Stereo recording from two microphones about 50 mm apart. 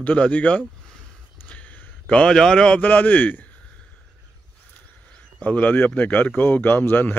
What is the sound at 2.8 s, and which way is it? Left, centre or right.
Speech, left.